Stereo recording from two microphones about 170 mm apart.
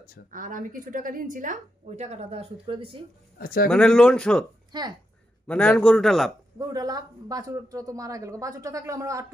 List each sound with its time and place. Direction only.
0.3 s a woman's voice: 50° right (ahead or behind); by 3.1 s 30° right (ahead or behind)
3.3 s speech: 60° left (ahead or behind)
3.6 s speech: 5° left (ahead or behind)
4.7 s speech: 25° right (ahead or behind)
5.5 s speech: 5° left (ahead or behind)
6.6 s speech: 20° right (ahead or behind)